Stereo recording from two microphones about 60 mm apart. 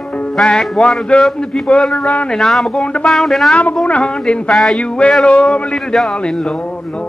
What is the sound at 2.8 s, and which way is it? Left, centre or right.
Speech, centre.